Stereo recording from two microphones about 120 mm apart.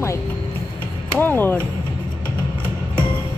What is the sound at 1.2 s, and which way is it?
Speech, 15° left (ahead or behind).